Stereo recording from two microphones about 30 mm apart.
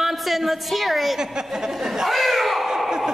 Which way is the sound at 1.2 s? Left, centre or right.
Centre.